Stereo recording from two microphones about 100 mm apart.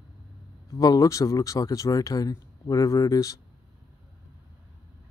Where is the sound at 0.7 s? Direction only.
35° left (ahead or behind).